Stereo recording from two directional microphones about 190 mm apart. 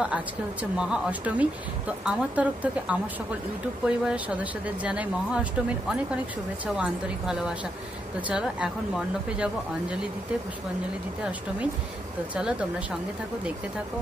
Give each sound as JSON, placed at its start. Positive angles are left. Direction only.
{"t": 0.0, "sound": "speech", "side_deg": -5}
{"t": 12.4, "sound": "speech", "side_deg": -5}